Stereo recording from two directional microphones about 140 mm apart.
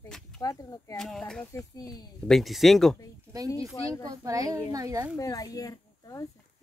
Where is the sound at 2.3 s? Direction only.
Centre (ahead or behind).